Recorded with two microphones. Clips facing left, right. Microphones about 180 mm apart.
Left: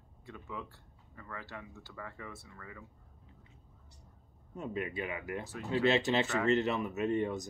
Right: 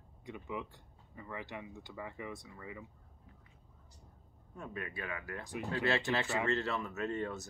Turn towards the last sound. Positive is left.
turn(degrees=15)  # may be behind; listen again after turning